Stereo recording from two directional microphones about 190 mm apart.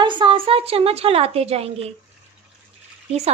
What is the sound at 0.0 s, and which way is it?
A woman's voice, 25° right (ahead or behind).